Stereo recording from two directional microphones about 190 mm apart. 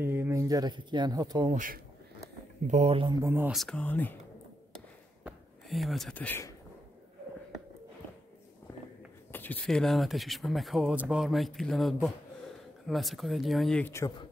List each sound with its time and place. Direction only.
0.0 s speech: 10° right (ahead or behind)
1.5 s speech: 45° right (ahead or behind)
3.2 s speech: 10° right (ahead or behind)
3.5 s speech: 5° left (ahead or behind)
5.2 s speech: centre (ahead or behind)
9.3 s speech: 10° left (ahead or behind)